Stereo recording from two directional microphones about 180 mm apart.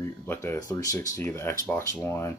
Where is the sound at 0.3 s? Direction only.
15° left (ahead or behind).